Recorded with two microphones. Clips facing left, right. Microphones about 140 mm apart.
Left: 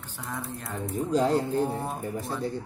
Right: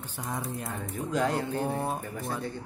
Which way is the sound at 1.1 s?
30° left (ahead or behind).